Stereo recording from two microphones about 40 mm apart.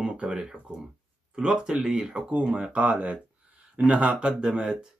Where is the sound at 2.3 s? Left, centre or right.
Right.